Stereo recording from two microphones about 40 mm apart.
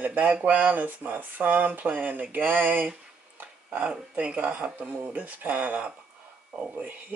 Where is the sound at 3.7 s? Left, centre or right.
Right.